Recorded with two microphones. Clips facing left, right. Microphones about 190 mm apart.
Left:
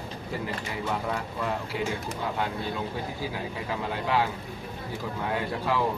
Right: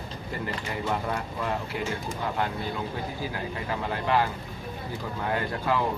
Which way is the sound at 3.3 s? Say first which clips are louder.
Right 1 dB; centre (ahead or behind).